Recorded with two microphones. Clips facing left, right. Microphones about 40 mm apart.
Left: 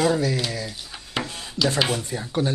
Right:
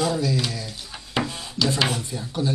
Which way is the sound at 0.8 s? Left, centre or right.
Centre.